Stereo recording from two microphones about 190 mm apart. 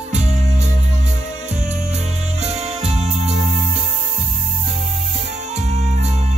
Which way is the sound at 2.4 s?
35° right (ahead or behind).